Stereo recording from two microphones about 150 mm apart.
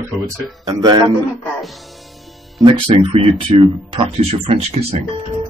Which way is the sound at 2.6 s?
30° right (ahead or behind).